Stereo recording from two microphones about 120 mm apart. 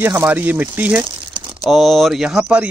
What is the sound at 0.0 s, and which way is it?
Speech, 20° right (ahead or behind).